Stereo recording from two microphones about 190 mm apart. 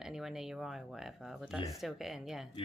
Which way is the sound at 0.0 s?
5° right (ahead or behind).